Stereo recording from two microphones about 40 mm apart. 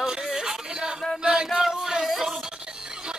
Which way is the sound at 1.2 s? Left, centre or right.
Centre.